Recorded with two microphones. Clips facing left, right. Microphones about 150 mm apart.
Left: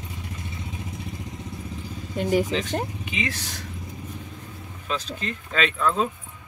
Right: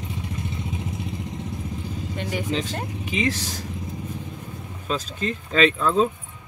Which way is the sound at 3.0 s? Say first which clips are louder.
Right 5 dB; 35° right (ahead or behind).